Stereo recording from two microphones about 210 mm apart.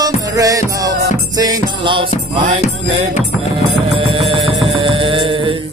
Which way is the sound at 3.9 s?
25° right (ahead or behind).